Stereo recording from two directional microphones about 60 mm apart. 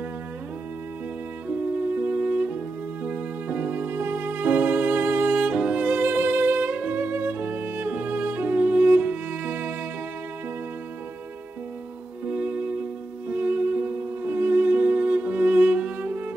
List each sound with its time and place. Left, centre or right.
1.8 s music: right
5.4 s music: centre
12.3 s music: right